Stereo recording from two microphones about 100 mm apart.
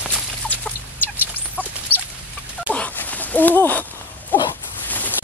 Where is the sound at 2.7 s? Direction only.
15° left (ahead or behind).